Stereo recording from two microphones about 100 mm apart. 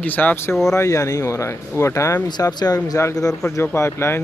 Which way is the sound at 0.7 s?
30° left (ahead or behind).